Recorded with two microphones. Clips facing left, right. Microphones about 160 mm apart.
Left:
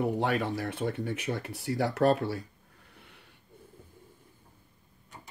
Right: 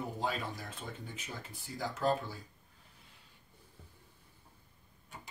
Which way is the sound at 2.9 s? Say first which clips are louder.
Left 9 dB; 70° left (ahead or behind).